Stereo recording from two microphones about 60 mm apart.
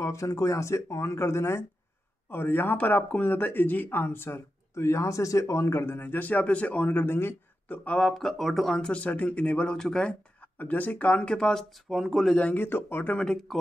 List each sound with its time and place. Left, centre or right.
0.0 s speech: left
2.2 s speech: left
7.7 s speech: left
8.1 s speech: centre
8.8 s speech: left
10.4 s speech: left
11.3 s speech: centre
11.9 s speech: centre
12.4 s speech: left
12.6 s speech: left
13.1 s speech: centre